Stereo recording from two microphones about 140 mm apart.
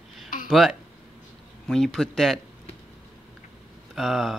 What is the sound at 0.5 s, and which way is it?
Speech, 5° right (ahead or behind).